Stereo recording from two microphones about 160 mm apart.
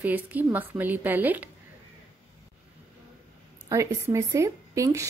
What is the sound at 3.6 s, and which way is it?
A woman's voice, 20° right (ahead or behind).